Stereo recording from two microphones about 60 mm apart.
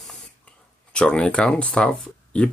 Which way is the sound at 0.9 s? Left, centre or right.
Centre.